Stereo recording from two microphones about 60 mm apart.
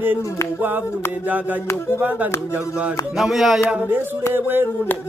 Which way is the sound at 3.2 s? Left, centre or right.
Centre.